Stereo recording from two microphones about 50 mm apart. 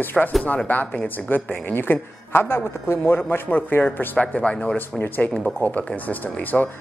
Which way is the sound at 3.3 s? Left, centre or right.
Left.